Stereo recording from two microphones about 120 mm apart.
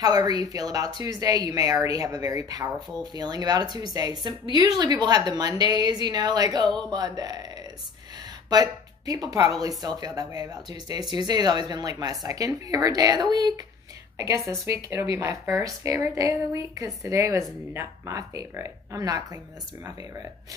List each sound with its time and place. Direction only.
0.0 s speech: 35° right (ahead or behind)
8.5 s speech: 30° right (ahead or behind)